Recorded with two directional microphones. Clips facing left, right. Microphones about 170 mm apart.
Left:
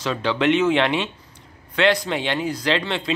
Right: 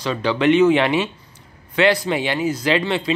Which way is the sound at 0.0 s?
Centre (ahead or behind).